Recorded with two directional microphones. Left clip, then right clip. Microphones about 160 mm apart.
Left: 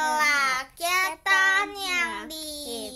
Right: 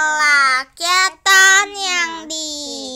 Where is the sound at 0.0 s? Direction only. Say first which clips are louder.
Right 9 dB; 15° right (ahead or behind).